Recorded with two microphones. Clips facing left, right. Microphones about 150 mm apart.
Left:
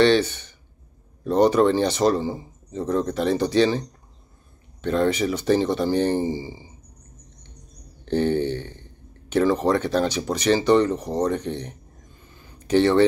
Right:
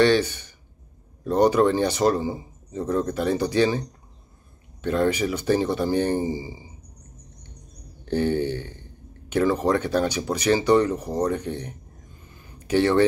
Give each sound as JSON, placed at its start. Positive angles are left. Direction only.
{"t": 0.0, "sound": "speech", "side_deg": -10}
{"t": 4.8, "sound": "speech", "side_deg": -10}
{"t": 8.0, "sound": "a sound", "side_deg": -10}
{"t": 9.3, "sound": "speech", "side_deg": -10}